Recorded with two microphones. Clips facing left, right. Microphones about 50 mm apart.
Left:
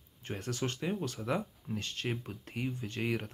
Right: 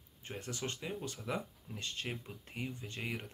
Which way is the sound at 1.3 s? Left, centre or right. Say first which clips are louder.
Left 5 dB; centre.